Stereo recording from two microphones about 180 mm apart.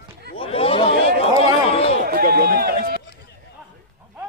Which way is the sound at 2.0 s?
55° right (ahead or behind).